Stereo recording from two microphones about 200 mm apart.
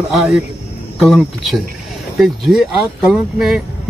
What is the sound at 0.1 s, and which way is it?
Speech, centre (ahead or behind).